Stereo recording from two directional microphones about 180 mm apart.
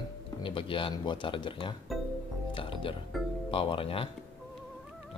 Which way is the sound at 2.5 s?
30° left (ahead or behind).